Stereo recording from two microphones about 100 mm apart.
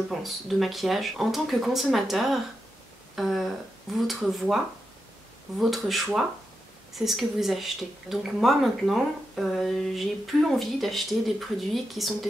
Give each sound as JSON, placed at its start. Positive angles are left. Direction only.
{"t": 0.1, "sound": "speech", "side_deg": 0}
{"t": 5.6, "sound": "speech", "side_deg": 0}